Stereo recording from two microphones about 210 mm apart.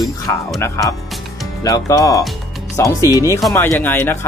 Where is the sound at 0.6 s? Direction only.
15° left (ahead or behind).